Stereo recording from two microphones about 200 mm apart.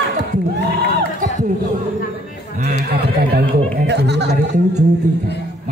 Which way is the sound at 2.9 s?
55° right (ahead or behind).